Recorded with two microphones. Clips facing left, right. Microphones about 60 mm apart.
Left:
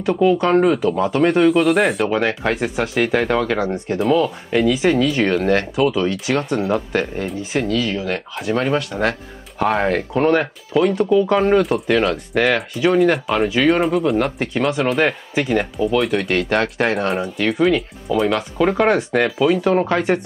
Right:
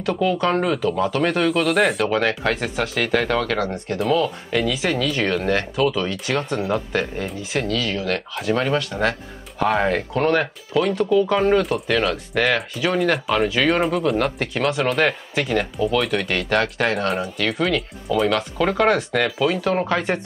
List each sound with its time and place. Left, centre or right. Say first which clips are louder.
0.0 s speech: left 4 dB; centre
2.0 s speech: left 1 dB; centre
5.4 s speech: left 4 dB; left
5.8 s speech: left 3 dB; centre
7.6 s speech: left 2 dB; centre
16.3 s speech: left 1 dB; centre
17.1 s speech: left 3 dB; centre
18.6 s speech: left 3 dB; centre